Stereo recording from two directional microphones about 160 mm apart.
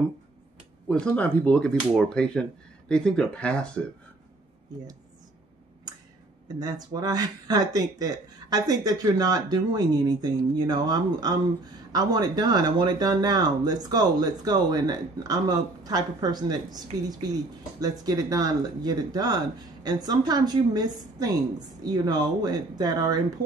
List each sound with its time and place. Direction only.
0.8 s speech: 5° left (ahead or behind)
5.9 s a sound: 25° right (ahead or behind)
6.6 s speech: 25° right (ahead or behind)